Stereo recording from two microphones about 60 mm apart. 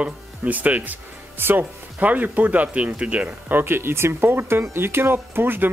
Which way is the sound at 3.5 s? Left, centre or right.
Right.